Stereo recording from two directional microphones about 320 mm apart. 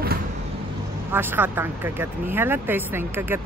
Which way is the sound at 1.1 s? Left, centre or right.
Centre.